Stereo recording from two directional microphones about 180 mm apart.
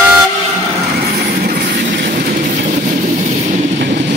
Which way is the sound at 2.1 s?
50° right (ahead or behind).